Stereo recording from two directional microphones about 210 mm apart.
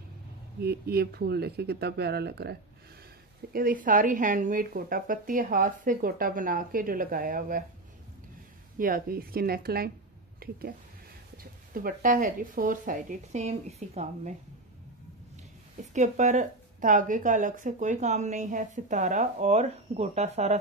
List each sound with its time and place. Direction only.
0.6 s speech: 50° right (ahead or behind)
3.5 s a woman's voice: 40° right (ahead or behind)
8.7 s speech: 45° right (ahead or behind)
11.7 s a woman's voice: 40° right (ahead or behind)
15.9 s a woman's voice: 35° right (ahead or behind)